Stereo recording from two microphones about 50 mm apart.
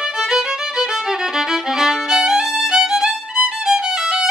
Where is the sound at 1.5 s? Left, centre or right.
Centre.